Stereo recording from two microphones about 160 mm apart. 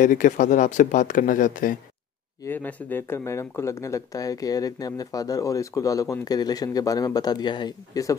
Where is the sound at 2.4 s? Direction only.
10° left (ahead or behind).